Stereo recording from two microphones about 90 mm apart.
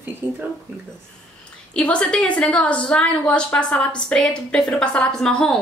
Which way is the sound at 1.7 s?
10° left (ahead or behind).